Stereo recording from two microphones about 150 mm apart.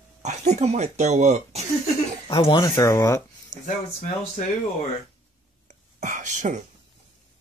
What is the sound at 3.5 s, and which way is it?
Speech, 25° right (ahead or behind).